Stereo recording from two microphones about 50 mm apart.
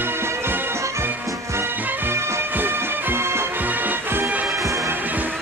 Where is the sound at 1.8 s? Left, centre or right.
Right.